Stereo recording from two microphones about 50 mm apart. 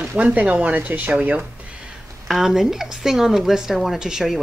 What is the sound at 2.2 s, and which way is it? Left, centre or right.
A woman's voice, centre.